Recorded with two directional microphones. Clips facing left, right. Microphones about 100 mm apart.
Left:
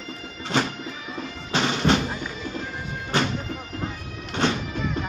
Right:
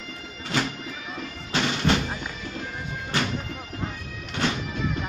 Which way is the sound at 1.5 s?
25° left (ahead or behind).